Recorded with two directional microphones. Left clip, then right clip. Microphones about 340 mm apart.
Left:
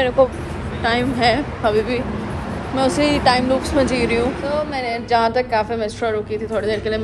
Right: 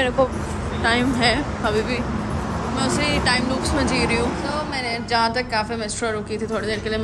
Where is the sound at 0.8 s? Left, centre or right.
Centre.